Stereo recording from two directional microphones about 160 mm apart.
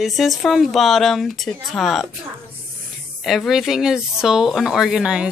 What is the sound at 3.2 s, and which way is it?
Speech, centre (ahead or behind).